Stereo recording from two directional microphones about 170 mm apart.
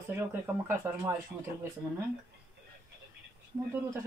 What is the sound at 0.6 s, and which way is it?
Speech, 15° right (ahead or behind).